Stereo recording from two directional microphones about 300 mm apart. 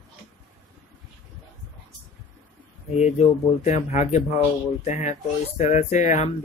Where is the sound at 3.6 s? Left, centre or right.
Left.